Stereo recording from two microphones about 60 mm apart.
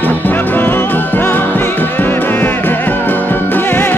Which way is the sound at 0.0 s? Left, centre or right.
Left.